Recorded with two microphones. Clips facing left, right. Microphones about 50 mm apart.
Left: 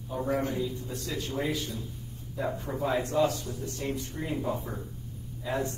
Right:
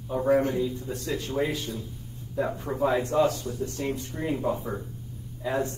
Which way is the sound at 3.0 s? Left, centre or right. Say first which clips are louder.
Right 3 dB; right.